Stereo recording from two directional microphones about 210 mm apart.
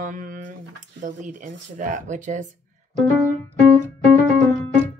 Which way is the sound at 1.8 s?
35° right (ahead or behind).